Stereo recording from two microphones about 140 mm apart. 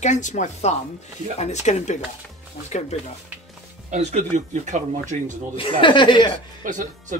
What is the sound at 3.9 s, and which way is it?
Speech, 55° right (ahead or behind).